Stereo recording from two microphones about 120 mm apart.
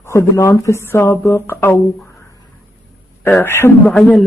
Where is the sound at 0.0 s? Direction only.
20° left (ahead or behind).